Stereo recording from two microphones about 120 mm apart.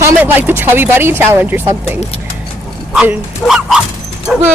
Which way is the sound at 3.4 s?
5° right (ahead or behind).